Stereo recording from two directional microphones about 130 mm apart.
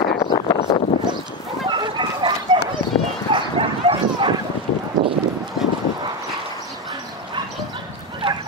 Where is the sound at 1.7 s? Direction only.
35° right (ahead or behind).